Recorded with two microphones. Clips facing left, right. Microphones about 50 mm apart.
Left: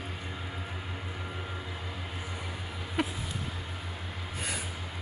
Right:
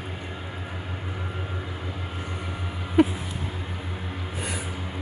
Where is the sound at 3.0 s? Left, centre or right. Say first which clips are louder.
Right 12 dB; centre.